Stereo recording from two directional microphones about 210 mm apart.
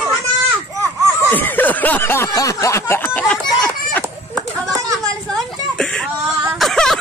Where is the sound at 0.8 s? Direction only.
15° right (ahead or behind).